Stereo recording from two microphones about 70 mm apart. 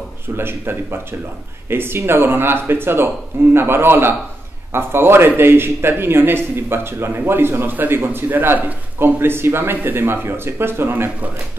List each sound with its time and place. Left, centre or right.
0.4 s a man's voice: right